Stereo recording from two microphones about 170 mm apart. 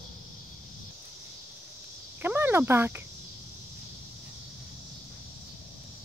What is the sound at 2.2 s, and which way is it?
Cricket, 10° right (ahead or behind).